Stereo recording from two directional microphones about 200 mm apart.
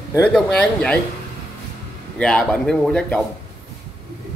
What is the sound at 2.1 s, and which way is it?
A man's voice, 5° left (ahead or behind).